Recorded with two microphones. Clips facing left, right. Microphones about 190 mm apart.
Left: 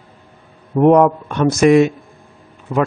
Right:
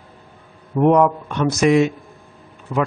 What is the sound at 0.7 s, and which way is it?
Speech, 50° left (ahead or behind).